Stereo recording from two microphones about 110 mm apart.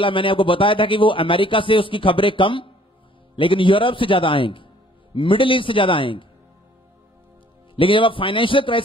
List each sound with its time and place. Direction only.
0.0 s a man's voice: 50° left (ahead or behind)
7.7 s a man's voice: 50° left (ahead or behind)